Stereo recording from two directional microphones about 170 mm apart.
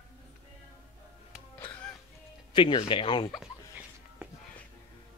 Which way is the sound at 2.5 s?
30° left (ahead or behind).